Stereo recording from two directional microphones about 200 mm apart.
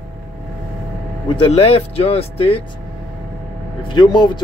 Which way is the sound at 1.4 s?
30° left (ahead or behind).